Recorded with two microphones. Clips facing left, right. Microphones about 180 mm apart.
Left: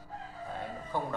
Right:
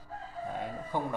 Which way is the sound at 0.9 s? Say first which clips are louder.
Right 1 dB; 15° right (ahead or behind).